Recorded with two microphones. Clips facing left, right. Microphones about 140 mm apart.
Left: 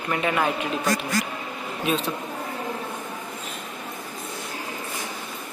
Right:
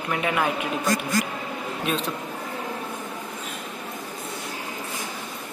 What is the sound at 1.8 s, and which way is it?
Speech, centre (ahead or behind).